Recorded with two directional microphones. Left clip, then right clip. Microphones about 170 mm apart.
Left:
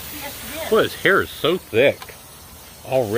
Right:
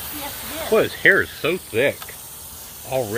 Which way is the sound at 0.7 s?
15° left (ahead or behind).